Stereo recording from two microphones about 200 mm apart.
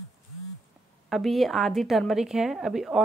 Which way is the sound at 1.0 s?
Centre (ahead or behind).